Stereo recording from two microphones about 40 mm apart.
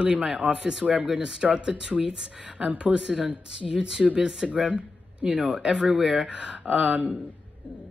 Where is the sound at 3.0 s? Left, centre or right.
Centre.